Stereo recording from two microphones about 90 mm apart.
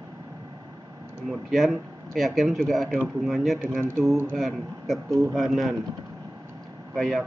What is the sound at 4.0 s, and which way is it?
Speech, 30° right (ahead or behind).